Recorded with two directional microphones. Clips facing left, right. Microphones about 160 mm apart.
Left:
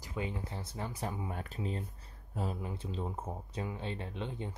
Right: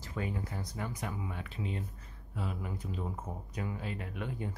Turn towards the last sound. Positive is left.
turn(degrees=25)  # may be behind; listen again after turning